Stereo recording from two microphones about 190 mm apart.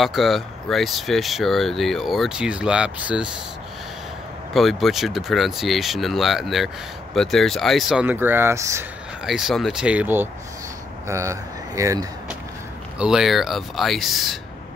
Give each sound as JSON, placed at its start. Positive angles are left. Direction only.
{"t": 0.0, "sound": "speech", "side_deg": 0}
{"t": 4.6, "sound": "speech", "side_deg": 0}
{"t": 9.2, "sound": "speech", "side_deg": 0}
{"t": 13.0, "sound": "speech", "side_deg": 0}